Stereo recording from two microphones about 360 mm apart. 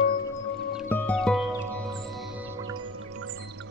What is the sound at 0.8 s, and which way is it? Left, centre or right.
Music, centre.